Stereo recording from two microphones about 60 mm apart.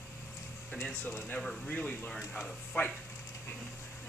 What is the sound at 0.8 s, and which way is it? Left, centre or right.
Speech, left.